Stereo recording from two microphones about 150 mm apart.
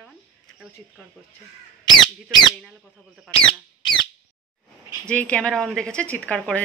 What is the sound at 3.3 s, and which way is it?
Speech, 30° left (ahead or behind).